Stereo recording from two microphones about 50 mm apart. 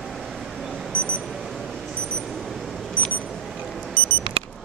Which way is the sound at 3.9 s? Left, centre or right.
Right.